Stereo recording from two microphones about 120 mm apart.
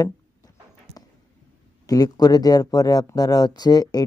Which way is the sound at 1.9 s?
30° left (ahead or behind).